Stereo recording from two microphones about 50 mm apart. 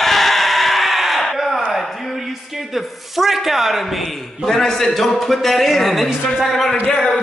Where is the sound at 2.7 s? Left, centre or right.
Centre.